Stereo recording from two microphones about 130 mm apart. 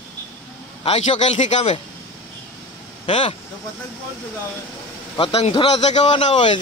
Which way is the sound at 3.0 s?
40° left (ahead or behind).